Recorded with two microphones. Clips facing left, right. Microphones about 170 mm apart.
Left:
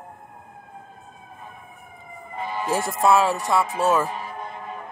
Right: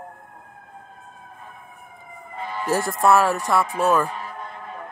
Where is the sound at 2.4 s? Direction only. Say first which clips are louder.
Left 2 dB; 20° left (ahead or behind).